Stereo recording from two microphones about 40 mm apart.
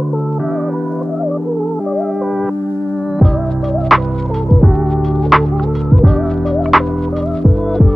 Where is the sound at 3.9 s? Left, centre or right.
Centre.